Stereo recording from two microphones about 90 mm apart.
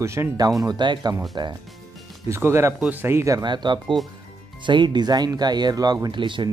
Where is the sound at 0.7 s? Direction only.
55° right (ahead or behind).